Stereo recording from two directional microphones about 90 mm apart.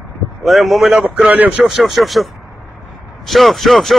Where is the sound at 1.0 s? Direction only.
10° right (ahead or behind).